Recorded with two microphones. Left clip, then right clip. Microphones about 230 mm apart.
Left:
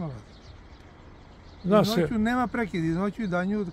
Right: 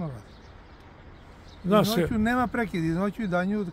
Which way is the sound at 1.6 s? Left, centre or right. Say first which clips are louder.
Left 1 dB; centre.